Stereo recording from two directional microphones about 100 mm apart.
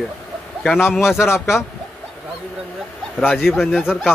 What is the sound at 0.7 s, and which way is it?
Speech, 25° left (ahead or behind).